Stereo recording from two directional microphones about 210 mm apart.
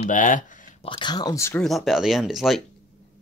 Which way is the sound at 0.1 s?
40° left (ahead or behind).